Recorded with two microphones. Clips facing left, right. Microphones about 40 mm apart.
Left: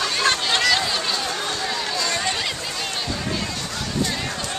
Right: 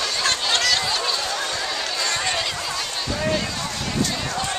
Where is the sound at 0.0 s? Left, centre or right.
Centre.